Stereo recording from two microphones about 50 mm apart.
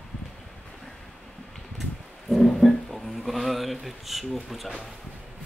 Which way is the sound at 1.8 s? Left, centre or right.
Centre.